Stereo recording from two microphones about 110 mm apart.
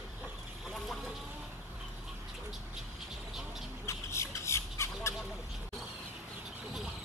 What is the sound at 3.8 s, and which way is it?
Squawk, 25° left (ahead or behind).